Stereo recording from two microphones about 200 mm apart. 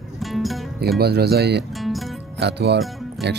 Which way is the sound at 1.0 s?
55° right (ahead or behind).